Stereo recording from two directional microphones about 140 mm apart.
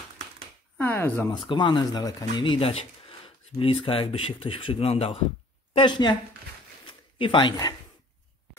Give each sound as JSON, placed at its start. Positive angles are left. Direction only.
{"t": 0.7, "sound": "speech", "side_deg": 15}
{"t": 1.3, "sound": "speech", "side_deg": 35}
{"t": 5.7, "sound": "a woman's voice", "side_deg": 35}
{"t": 6.9, "sound": "a sound", "side_deg": 40}